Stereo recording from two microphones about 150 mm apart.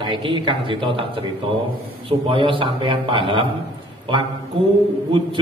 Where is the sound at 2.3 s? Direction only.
35° right (ahead or behind).